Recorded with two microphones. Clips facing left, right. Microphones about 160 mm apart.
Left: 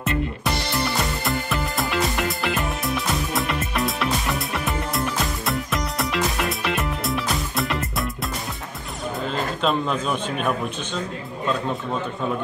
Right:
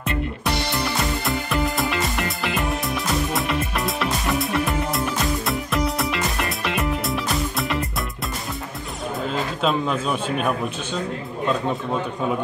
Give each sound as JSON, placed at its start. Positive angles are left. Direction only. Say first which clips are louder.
{"t": 0.0, "sound": "music", "louder": "left 1 dB", "side_deg": 0}
{"t": 9.6, "sound": "a man's voice", "louder": "right 1 dB", "side_deg": 0}